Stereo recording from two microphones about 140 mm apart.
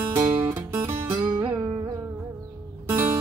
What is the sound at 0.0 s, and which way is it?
Music, 15° right (ahead or behind).